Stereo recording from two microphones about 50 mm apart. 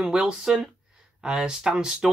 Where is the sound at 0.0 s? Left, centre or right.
Centre.